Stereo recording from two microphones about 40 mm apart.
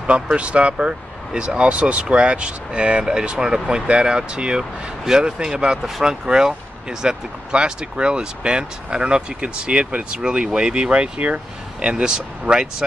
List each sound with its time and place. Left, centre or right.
0.0 s speech: right
11.8 s speech: right